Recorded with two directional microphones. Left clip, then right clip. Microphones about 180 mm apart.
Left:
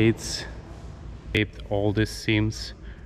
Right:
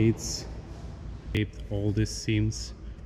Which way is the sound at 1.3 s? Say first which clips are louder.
Left 8 dB; 10° right (ahead or behind).